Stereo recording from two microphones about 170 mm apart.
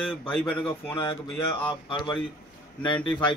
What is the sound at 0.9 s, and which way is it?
Speech, 30° left (ahead or behind).